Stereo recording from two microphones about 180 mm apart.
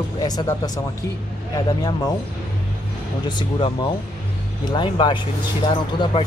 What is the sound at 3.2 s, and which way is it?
Speech, 25° left (ahead or behind).